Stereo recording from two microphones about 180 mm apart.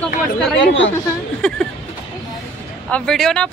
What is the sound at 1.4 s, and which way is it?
Speech, 5° left (ahead or behind).